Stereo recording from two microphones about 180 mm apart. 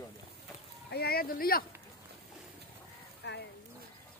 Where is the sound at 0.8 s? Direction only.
60° left (ahead or behind).